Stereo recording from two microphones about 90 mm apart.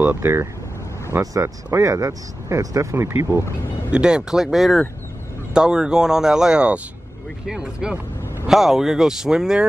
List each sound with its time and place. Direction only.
0.0 s speech: 25° right (ahead or behind)
3.9 s speech: 10° right (ahead or behind)